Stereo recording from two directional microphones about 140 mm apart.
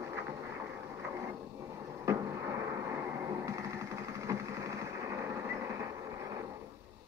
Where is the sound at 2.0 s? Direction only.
20° right (ahead or behind).